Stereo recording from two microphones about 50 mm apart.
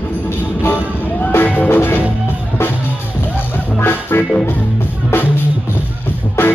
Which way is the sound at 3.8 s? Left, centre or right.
Left.